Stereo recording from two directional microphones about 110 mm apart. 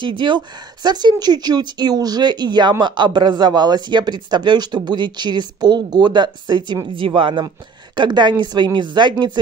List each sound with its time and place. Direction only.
0.0 s speech: 45° right (ahead or behind)